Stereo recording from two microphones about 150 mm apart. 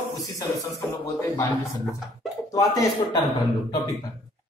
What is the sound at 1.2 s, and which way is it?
Mantra, 20° left (ahead or behind).